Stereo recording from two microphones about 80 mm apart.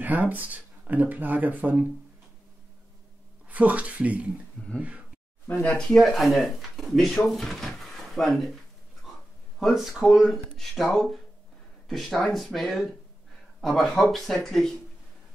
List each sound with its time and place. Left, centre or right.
0.0 s speech: right
3.4 s speech: centre
4.6 s speech: centre
5.9 s speech: centre
9.6 s speech: centre